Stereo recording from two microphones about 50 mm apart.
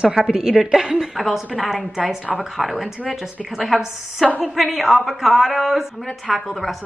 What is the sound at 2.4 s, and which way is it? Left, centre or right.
A woman's voice, centre.